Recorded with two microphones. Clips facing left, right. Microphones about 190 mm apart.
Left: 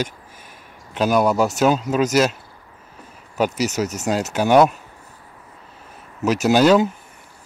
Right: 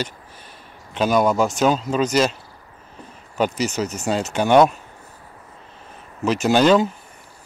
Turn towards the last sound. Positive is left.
turn(degrees=5)  # may be behind; listen again after turning